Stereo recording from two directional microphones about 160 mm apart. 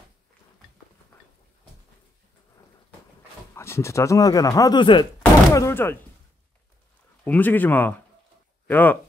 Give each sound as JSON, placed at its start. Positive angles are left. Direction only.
{"t": 3.5, "sound": "speech", "side_deg": 15}
{"t": 5.5, "sound": "speech", "side_deg": 20}
{"t": 7.2, "sound": "speech", "side_deg": 10}